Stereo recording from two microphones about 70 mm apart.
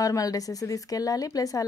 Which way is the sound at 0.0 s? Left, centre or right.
Left.